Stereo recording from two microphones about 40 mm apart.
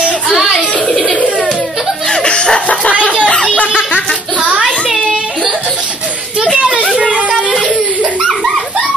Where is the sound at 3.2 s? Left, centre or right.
Left.